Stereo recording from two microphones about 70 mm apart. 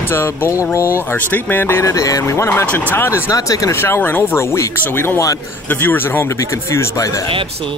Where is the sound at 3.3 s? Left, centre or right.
Left.